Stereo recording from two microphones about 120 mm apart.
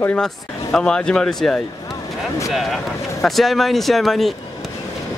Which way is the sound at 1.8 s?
25° left (ahead or behind).